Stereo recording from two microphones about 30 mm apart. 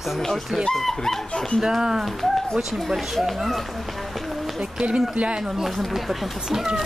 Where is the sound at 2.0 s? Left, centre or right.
Centre.